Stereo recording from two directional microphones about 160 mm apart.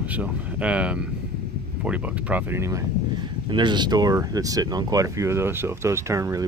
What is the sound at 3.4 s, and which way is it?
Speech, 30° right (ahead or behind).